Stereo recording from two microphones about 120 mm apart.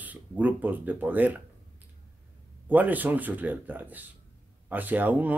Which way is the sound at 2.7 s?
15° right (ahead or behind).